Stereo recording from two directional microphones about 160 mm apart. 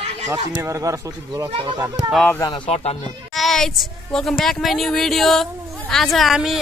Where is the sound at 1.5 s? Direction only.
35° right (ahead or behind).